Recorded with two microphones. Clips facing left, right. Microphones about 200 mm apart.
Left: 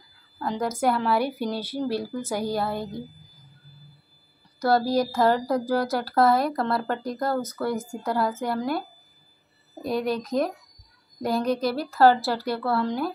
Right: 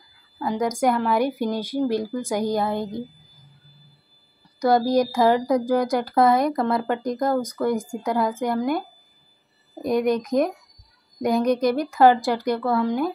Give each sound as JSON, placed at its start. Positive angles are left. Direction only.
{"t": 0.4, "sound": "speech", "side_deg": -15}
{"t": 4.6, "sound": "speech", "side_deg": -15}